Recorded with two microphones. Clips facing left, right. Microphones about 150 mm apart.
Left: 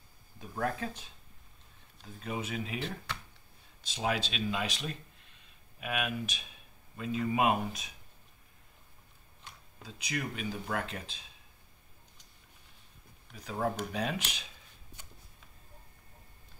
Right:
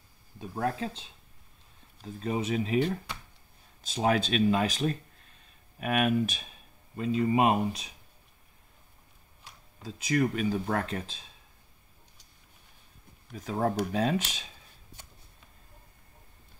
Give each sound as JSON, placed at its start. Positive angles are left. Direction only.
{"t": 0.6, "sound": "speech", "side_deg": -25}
{"t": 2.0, "sound": "speech", "side_deg": -35}
{"t": 7.0, "sound": "speech", "side_deg": -30}
{"t": 9.8, "sound": "speech", "side_deg": -45}
{"t": 13.4, "sound": "speech", "side_deg": -45}